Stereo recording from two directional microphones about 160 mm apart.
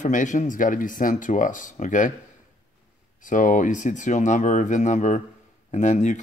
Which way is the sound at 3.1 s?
55° left (ahead or behind).